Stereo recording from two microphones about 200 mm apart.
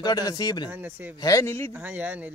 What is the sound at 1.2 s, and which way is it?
Speech, 15° left (ahead or behind).